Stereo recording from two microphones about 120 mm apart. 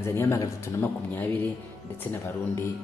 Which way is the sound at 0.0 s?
20° left (ahead or behind).